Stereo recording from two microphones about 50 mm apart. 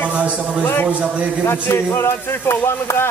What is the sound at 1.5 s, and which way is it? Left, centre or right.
Speech, left.